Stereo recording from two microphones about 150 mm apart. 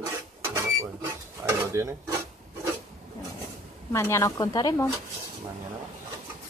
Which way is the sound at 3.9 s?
20° left (ahead or behind).